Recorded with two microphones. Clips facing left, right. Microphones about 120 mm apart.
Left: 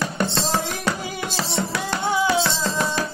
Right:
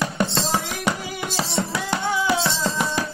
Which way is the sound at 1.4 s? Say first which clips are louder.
Right 1 dB; 15° right (ahead or behind).